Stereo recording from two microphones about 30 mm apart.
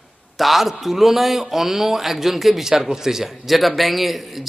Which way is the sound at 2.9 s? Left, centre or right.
Centre.